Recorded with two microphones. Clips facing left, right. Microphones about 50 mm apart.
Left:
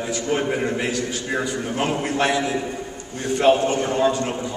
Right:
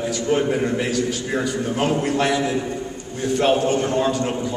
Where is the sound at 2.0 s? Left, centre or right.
Left.